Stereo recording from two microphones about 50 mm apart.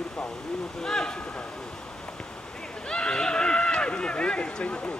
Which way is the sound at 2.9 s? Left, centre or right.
Centre.